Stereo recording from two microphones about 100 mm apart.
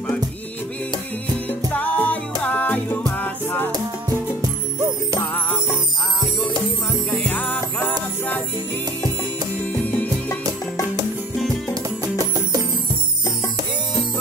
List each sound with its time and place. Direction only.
1.5 s music: 15° left (ahead or behind)
5.2 s music: 20° left (ahead or behind)
7.1 s music: 15° left (ahead or behind)
9.6 s music: 15° left (ahead or behind)
11.7 s music: 40° right (ahead or behind)